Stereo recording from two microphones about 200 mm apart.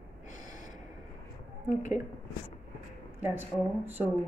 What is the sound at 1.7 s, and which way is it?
Speech, 40° left (ahead or behind).